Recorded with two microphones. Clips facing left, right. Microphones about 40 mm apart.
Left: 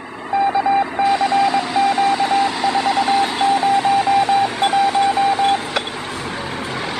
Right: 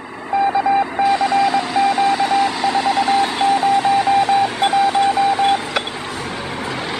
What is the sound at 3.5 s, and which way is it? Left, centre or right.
Radio, left.